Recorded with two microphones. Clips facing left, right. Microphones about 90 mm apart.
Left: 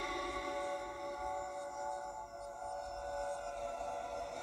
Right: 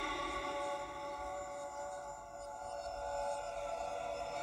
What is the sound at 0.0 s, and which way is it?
Music, 10° left (ahead or behind).